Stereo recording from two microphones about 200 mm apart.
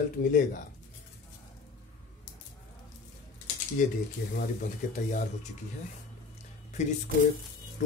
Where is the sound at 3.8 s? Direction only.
40° left (ahead or behind).